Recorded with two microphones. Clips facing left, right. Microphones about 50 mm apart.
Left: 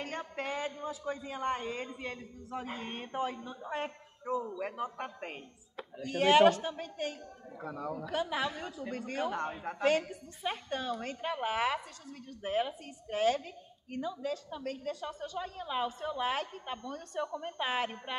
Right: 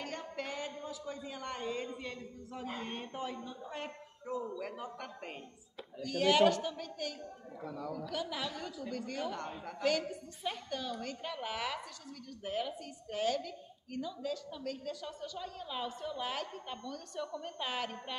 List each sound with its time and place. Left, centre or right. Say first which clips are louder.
0.4 s a man's voice: left 5 dB; left